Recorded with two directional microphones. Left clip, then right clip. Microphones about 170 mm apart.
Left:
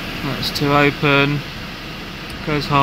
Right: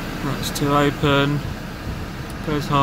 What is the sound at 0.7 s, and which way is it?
Speech, 20° left (ahead or behind).